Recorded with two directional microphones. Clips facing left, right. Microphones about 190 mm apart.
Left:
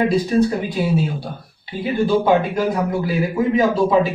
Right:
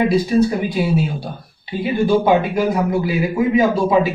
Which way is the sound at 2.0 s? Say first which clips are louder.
Right 1 dB; 10° right (ahead or behind).